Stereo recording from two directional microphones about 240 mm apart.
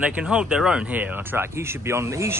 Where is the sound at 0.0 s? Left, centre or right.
Centre.